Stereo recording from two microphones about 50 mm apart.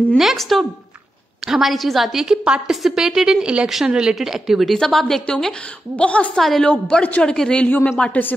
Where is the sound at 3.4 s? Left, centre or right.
Right.